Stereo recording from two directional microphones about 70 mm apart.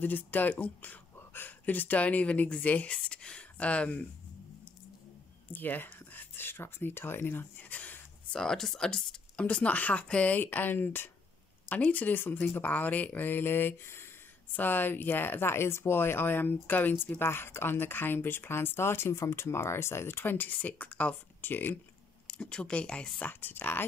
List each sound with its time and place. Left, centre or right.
0.0 s speech: left
5.5 s speech: left
8.4 s speech: centre; by 21.7 s left
22.3 s speech: centre
23.4 s speech: left